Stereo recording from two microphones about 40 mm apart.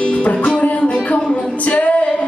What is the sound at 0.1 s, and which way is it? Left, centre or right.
Music, left.